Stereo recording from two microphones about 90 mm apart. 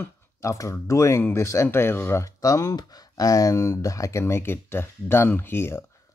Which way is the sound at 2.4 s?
40° left (ahead or behind).